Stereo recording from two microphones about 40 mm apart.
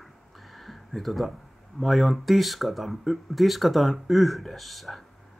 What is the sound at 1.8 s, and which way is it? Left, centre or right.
Speech, centre.